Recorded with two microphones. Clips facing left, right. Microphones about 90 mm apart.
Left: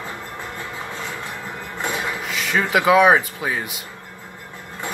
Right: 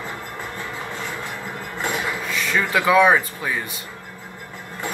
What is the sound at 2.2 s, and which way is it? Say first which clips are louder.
Speech: left 2 dB; 20° left (ahead or behind).